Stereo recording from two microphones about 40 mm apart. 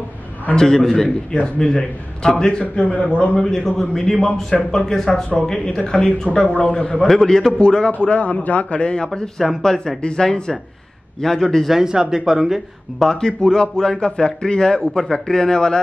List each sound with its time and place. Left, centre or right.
0.6 s a man's voice: centre
2.6 s a man's voice: left
3.4 s a man's voice: centre
8.0 s a man's voice: left; by 11.6 s centre
11.8 s speech: centre
13.0 s a man's voice: centre